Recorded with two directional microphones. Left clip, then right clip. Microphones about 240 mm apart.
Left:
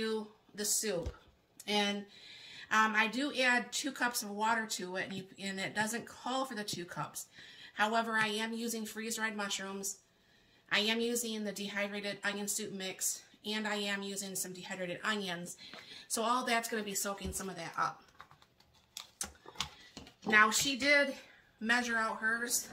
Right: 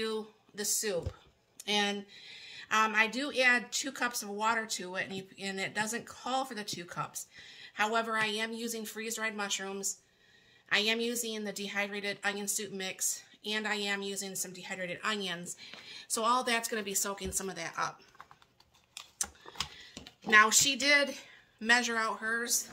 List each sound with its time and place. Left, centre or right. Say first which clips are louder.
0.0 s a woman's voice: right 1 dB; right
19.9 s speech: right 5 dB; right